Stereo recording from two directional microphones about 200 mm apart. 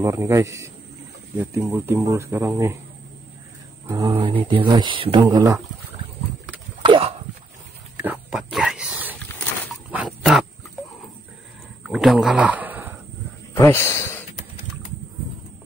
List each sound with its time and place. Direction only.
0.0 s speech: 15° right (ahead or behind)
3.8 s speech: 15° right (ahead or behind)
6.8 s clip-clop: 25° right (ahead or behind)
8.0 s a sound: 5° right (ahead or behind)
9.8 s pig: 5° right (ahead or behind)
11.8 s speech: centre (ahead or behind)
13.6 s speech: 15° left (ahead or behind)